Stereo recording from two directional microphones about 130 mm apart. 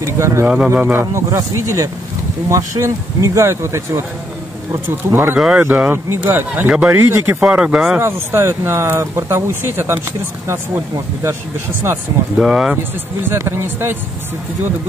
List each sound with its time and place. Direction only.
0.0 s a man's voice: 20° right (ahead or behind); by 8.0 s 5° right (ahead or behind)
8.0 s speech: 20° right (ahead or behind)
12.4 s speech: 5° right (ahead or behind)
13.3 s speech: 20° right (ahead or behind)